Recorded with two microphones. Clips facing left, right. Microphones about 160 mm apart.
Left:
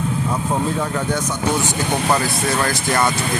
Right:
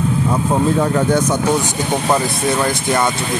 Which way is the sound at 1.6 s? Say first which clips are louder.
Right 2 dB; 15° right (ahead or behind).